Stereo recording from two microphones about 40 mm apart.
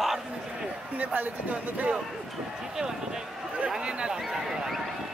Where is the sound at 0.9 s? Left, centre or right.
Right.